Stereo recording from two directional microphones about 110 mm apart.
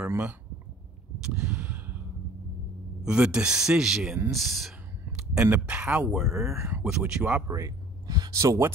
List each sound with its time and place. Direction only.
1.2 s a sound: 10° right (ahead or behind)
3.0 s speech: 10° right (ahead or behind)
5.1 s a sound: 5° right (ahead or behind)
5.5 s speech: 10° right (ahead or behind)
6.5 s speech: 25° right (ahead or behind)
6.8 s speech: 10° right (ahead or behind)
7.4 s speech: 30° right (ahead or behind)